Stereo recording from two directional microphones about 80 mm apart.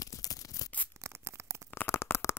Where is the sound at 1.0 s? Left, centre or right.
Right.